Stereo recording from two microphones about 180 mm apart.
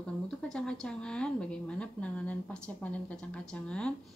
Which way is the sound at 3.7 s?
5° left (ahead or behind).